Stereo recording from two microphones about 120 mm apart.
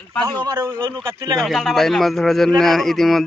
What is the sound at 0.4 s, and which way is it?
A man's voice, 35° right (ahead or behind).